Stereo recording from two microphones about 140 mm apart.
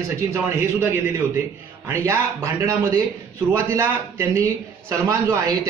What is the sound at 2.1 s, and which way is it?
A man's voice, 20° right (ahead or behind).